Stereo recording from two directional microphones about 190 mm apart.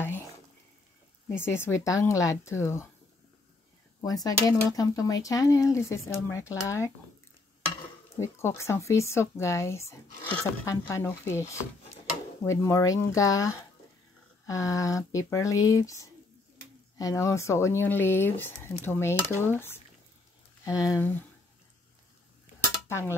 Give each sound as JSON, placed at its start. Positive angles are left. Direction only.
{"t": 1.3, "sound": "speech", "side_deg": 10}
{"t": 4.0, "sound": "speech", "side_deg": 20}
{"t": 8.2, "sound": "speech", "side_deg": 15}
{"t": 22.8, "sound": "a sound", "side_deg": 15}